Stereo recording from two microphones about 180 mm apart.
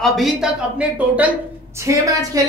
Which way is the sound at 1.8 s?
15° right (ahead or behind).